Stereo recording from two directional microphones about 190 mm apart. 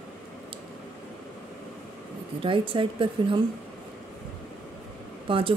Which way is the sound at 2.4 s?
25° right (ahead or behind).